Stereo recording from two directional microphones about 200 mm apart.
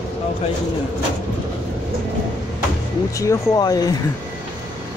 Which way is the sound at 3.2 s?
15° left (ahead or behind).